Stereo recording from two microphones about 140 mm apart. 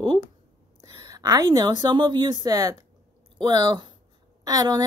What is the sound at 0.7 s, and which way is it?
A woman's voice, 25° right (ahead or behind).